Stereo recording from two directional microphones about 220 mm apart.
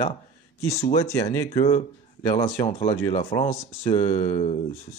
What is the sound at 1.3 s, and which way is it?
Speech, 15° left (ahead or behind).